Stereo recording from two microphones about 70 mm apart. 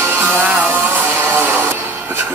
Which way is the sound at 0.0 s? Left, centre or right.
Right.